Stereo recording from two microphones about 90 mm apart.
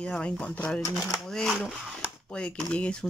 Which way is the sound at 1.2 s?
5° left (ahead or behind).